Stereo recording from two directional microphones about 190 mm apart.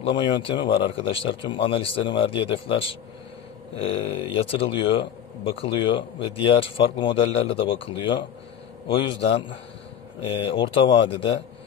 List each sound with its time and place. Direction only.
0.0 s speech: 25° left (ahead or behind)